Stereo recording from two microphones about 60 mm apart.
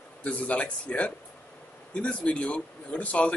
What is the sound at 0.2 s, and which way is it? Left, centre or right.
A man's voice, left.